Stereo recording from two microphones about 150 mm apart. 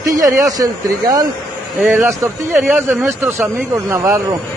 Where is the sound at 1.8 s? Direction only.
5° right (ahead or behind).